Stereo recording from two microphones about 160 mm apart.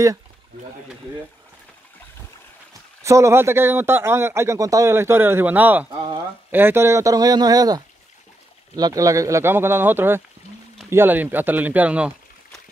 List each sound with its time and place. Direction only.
3.0 s a man's voice: 20° right (ahead or behind)
5.9 s speech: 30° right (ahead or behind)
6.5 s a man's voice: 15° right (ahead or behind)